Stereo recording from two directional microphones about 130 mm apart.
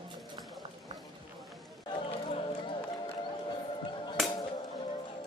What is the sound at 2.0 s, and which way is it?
Music, 40° left (ahead or behind).